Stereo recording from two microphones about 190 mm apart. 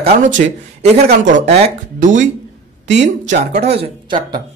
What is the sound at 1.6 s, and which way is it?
Speech, 40° right (ahead or behind).